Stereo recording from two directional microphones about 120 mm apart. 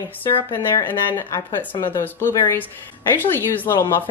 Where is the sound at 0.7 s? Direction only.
25° left (ahead or behind).